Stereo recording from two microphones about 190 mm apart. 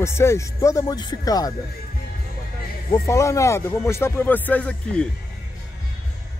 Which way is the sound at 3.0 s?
15° left (ahead or behind).